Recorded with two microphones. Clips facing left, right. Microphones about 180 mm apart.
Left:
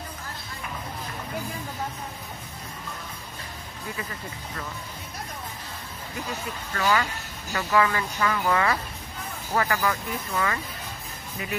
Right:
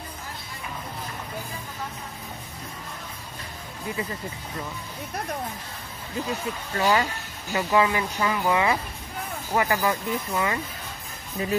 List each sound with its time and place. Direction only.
6.7 s speech: 30° right (ahead or behind)